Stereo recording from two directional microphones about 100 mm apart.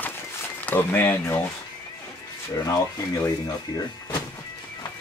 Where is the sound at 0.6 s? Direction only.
20° left (ahead or behind).